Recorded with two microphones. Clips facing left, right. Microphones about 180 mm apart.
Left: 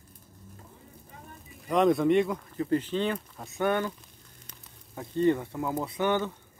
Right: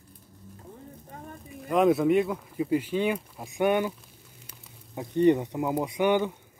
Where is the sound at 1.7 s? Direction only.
5° right (ahead or behind).